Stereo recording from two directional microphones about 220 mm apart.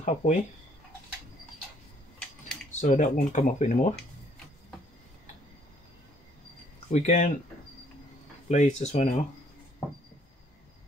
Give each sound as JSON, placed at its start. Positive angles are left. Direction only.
{"t": 0.0, "sound": "speech", "side_deg": 35}
{"t": 2.1, "sound": "a sound", "side_deg": 5}
{"t": 2.8, "sound": "speech", "side_deg": 35}
{"t": 6.9, "sound": "speech", "side_deg": 30}
{"t": 8.5, "sound": "speech", "side_deg": 35}